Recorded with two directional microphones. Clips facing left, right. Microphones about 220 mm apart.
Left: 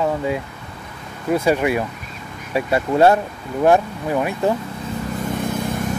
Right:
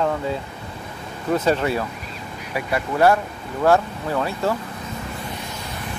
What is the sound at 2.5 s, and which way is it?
Speech, 25° left (ahead or behind).